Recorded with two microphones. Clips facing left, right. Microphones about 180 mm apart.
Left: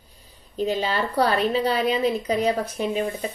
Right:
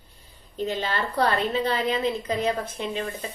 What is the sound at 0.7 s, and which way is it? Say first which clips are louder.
A woman's voice: left 3 dB; 10° left (ahead or behind).